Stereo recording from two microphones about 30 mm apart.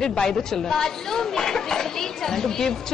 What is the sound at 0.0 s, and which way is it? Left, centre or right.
A woman's voice, centre.